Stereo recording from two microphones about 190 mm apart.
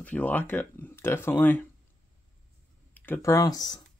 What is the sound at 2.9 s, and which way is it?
Speech, 10° left (ahead or behind).